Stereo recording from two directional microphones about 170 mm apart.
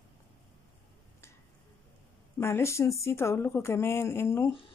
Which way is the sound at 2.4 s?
15° left (ahead or behind).